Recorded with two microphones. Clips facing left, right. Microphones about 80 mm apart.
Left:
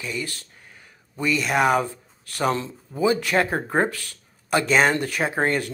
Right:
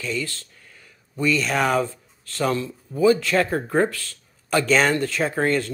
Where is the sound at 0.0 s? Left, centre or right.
Left.